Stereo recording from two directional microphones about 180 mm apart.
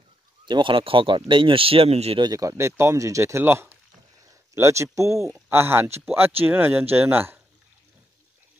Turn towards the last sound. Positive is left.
turn(degrees=-10)  # may be behind; listen again after turning